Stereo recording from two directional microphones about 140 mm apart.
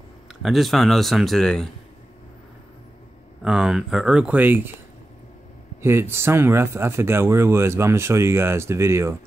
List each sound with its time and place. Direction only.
0.3 s speech: centre (ahead or behind)
3.4 s speech: 5° right (ahead or behind)
5.8 s speech: 15° right (ahead or behind)